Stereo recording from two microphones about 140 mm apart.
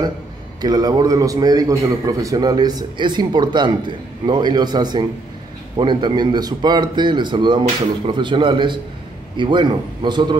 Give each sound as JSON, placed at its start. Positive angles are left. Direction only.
{"t": 0.6, "sound": "a man's voice", "side_deg": -30}